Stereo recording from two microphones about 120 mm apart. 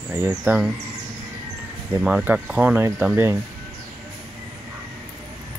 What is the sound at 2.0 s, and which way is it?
Speech, 5° right (ahead or behind).